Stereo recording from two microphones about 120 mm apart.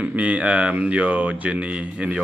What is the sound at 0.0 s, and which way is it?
Speech, 10° right (ahead or behind).